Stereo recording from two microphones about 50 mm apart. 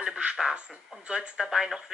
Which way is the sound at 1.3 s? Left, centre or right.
Centre.